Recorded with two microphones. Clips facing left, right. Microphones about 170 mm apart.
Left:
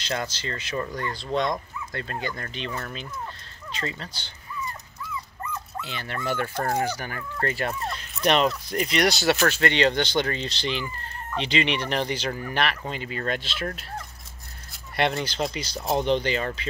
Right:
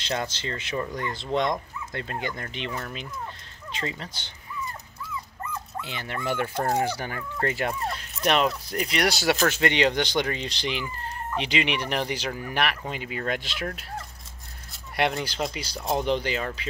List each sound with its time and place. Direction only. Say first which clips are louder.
0.0 s speech: even; 20° right (ahead or behind)
5.8 s speech: even; 15° right (ahead or behind)
7.2 s speech: even; 15° right (ahead or behind)
8.2 s speech: left 2 dB; 5° right (ahead or behind)
15.0 s speech: left 1 dB; 10° right (ahead or behind)